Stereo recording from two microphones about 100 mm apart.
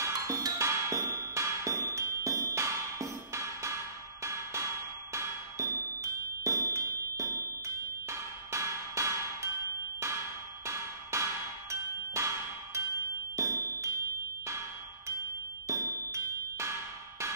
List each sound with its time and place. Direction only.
0.0 s music: 30° right (ahead or behind)
6.4 s a sound: 30° right (ahead or behind)
9.9 s music: 30° right (ahead or behind)
15.6 s music: 30° right (ahead or behind)